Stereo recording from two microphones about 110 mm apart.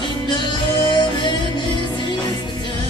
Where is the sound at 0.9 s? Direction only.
45° left (ahead or behind).